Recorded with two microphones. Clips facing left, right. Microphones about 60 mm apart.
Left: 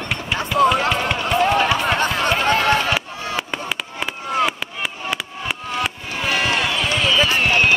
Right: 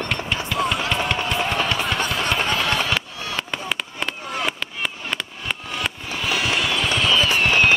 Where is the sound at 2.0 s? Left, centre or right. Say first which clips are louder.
Left 4 dB; left.